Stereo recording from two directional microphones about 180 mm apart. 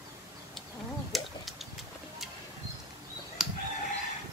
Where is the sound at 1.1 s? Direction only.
Centre (ahead or behind).